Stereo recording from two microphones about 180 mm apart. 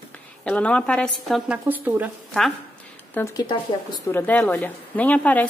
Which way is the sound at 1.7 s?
10° right (ahead or behind).